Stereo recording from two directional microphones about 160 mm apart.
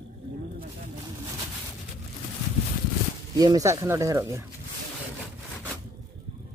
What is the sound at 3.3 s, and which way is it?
Speech, 20° right (ahead or behind).